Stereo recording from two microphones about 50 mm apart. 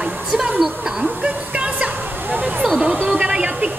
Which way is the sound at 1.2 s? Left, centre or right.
Right.